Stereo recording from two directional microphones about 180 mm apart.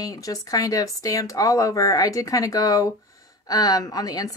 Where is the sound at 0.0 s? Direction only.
20° left (ahead or behind).